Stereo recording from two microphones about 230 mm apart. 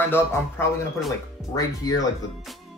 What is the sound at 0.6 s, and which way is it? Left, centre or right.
Speech, centre.